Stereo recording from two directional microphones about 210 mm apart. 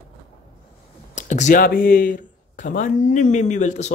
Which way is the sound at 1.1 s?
35° left (ahead or behind).